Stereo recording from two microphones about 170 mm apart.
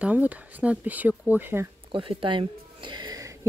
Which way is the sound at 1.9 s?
30° right (ahead or behind).